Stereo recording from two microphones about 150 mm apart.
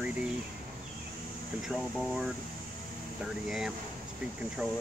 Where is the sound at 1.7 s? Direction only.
Centre (ahead or behind).